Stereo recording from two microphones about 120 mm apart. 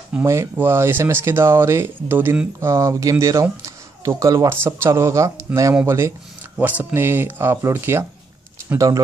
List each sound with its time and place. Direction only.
0.2 s speech: 25° right (ahead or behind)